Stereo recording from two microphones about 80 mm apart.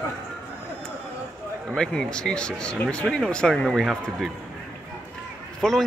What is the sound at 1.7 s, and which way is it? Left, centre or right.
Speech, centre.